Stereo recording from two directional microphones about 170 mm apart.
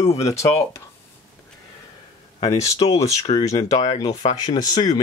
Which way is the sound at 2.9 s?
40° left (ahead or behind).